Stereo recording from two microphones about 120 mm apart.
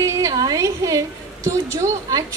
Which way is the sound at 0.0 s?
30° right (ahead or behind).